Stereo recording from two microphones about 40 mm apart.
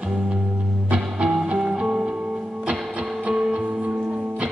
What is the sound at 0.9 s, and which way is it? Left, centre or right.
Music, right.